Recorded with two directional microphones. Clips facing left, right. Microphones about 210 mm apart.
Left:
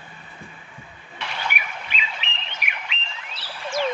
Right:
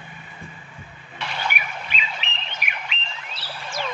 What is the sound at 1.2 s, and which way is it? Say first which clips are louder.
Squawk: right 2 dB; 35° right (ahead or behind).